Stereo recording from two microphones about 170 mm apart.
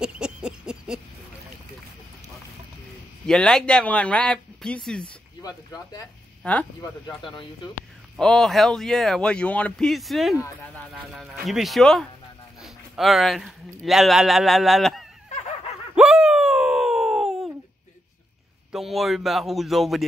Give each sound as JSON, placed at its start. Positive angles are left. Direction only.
{"t": 0.0, "sound": "a sound", "side_deg": -5}
{"t": 3.3, "sound": "speech", "side_deg": 5}
{"t": 5.0, "sound": "speech", "side_deg": 20}
{"t": 6.4, "sound": "speech", "side_deg": 10}
{"t": 7.2, "sound": "speech", "side_deg": 30}
{"t": 8.2, "sound": "speech", "side_deg": 5}
{"t": 12.6, "sound": "a sound", "side_deg": 0}
{"t": 13.8, "sound": "speech", "side_deg": 0}
{"t": 16.0, "sound": "a sound", "side_deg": -5}
{"t": 18.7, "sound": "speech", "side_deg": 0}